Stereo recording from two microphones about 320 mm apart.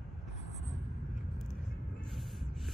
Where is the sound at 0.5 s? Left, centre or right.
Left.